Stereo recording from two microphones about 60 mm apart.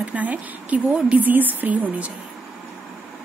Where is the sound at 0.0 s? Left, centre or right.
Right.